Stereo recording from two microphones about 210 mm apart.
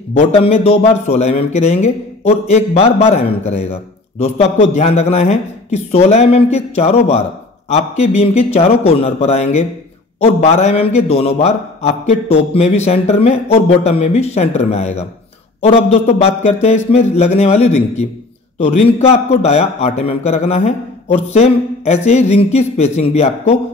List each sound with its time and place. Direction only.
0.1 s a man's voice: 30° left (ahead or behind)